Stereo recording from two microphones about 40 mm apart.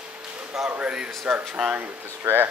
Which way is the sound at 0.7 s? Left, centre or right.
Right.